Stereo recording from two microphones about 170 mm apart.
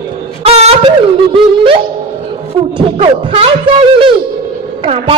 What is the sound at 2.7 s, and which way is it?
A woman's voice, 35° right (ahead or behind).